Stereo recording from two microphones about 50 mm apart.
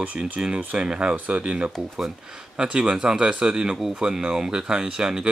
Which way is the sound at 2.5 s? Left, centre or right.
Centre.